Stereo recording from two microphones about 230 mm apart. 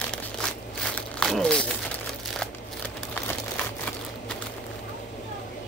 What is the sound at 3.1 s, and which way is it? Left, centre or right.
Crumpling, centre.